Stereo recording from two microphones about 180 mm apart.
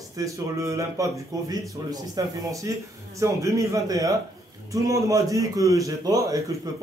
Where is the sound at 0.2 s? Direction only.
15° right (ahead or behind).